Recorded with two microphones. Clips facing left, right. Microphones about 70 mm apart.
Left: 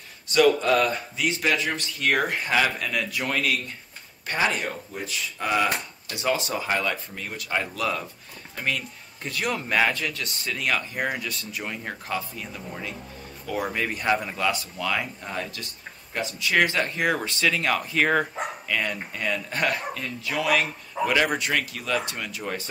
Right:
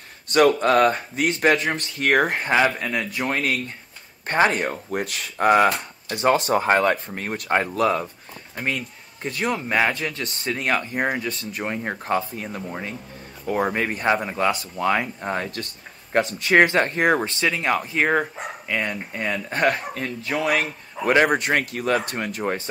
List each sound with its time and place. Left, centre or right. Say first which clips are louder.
0.3 s speech: right 3 dB; right
2.5 s speech: right 3 dB; right
4.3 s speech: right 6 dB; right
9.2 s speech: right 3 dB; right